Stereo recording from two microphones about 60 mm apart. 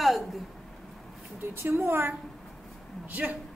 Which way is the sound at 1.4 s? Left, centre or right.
Right.